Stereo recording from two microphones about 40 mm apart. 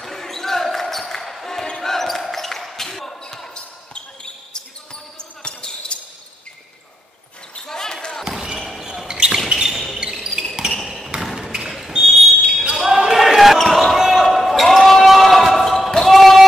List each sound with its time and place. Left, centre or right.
0.0 s basketball bounce: centre
3.3 s basketball bounce: centre
7.6 s basketball bounce: centre
8.2 s basketball bounce: centre
9.0 s basketball bounce: centre
9.5 s a sound: centre
12.7 s basketball bounce: centre
13.9 s a sound: centre
15.0 s basketball bounce: centre
16.2 s a sound: centre